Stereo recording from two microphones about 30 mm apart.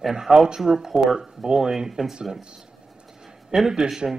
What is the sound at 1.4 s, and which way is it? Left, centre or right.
Speech, right.